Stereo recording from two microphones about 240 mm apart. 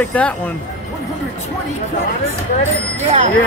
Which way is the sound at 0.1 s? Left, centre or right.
Centre.